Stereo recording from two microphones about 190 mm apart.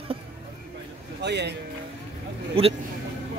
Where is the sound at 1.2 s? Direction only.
65° right (ahead or behind).